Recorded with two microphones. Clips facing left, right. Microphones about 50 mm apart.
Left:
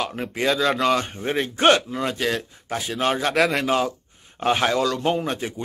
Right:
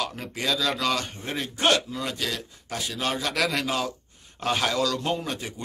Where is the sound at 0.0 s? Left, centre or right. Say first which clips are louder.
Left 6 dB; left.